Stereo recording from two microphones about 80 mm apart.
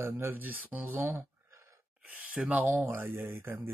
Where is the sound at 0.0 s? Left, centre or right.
Right.